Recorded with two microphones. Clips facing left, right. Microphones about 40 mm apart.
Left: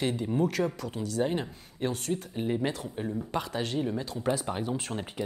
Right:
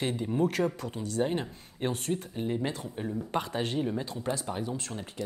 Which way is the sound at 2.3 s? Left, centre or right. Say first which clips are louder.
Left 4 dB; centre.